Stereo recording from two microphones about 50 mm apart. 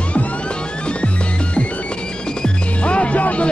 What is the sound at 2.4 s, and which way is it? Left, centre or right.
Music, left.